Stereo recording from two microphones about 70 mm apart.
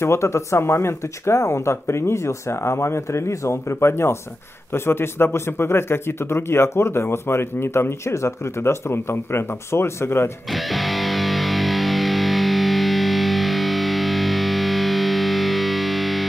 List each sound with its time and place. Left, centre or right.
0.0 s a man's voice: left
10.5 s music: centre